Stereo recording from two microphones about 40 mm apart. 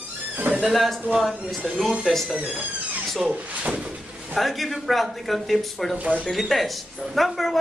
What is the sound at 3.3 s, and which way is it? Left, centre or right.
Speech, right.